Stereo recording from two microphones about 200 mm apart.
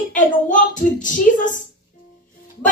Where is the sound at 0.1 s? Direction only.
40° left (ahead or behind).